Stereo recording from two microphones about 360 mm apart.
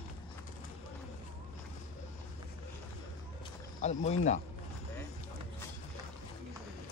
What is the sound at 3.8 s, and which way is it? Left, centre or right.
Speech, centre.